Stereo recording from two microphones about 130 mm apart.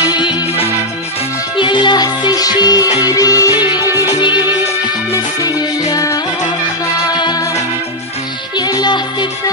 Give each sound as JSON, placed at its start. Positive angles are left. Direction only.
{"t": 0.0, "sound": "music", "side_deg": 35}
{"t": 7.2, "sound": "music", "side_deg": 35}
{"t": 8.5, "sound": "music", "side_deg": 30}